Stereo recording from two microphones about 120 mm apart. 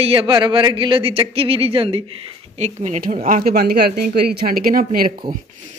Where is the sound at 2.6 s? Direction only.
75° right (ahead or behind).